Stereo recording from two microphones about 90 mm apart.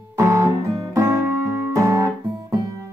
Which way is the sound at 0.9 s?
35° right (ahead or behind).